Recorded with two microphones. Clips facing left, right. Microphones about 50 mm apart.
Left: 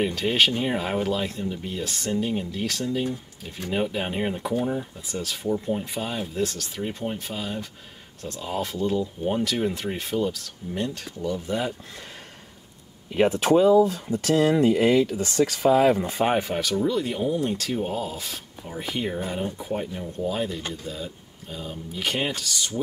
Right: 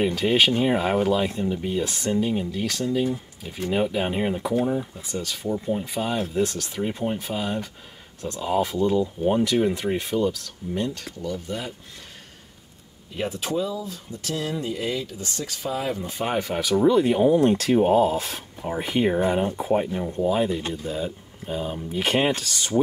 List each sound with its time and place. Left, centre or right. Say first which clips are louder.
0.0 s speech: right 2 dB; centre
13.1 s speech: left 8 dB; left
13.4 s speech: left 10 dB; left
13.7 s speech: left 14 dB; left
14.3 s speech: left 9 dB; left
16.3 s speech: even; centre
16.7 s speech: right 9 dB; right
17.4 s speech: right 8 dB; right
17.9 s speech: right 10 dB; right
20.2 s speech: right 5 dB; centre
20.9 s speech: right 6 dB; right